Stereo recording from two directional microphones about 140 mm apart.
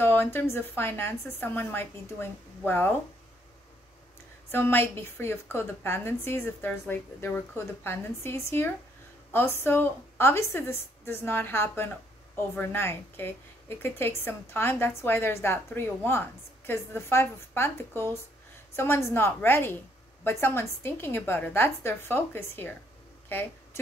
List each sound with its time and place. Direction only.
0.0 s a woman's voice: 15° left (ahead or behind)
4.5 s a woman's voice: 15° left (ahead or behind)
23.2 s a sound: 15° left (ahead or behind)